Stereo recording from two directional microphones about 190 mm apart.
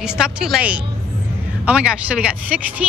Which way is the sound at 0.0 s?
5° right (ahead or behind).